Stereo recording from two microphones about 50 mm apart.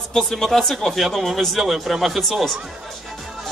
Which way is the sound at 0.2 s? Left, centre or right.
Centre.